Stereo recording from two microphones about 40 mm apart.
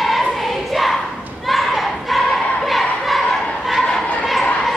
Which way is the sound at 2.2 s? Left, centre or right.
Centre.